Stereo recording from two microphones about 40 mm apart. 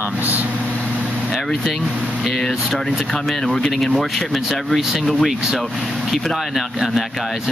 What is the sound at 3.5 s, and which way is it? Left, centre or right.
Speech, centre.